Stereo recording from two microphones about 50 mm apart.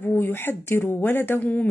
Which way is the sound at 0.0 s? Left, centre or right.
Left.